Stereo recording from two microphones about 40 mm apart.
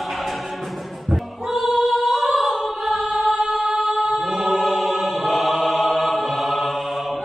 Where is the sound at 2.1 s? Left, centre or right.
Centre.